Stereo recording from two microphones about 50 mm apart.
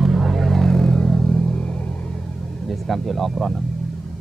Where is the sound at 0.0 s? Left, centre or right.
Centre; by 2.1 s left.